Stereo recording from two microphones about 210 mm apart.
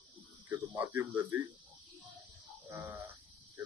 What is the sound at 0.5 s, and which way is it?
Speech, 10° right (ahead or behind).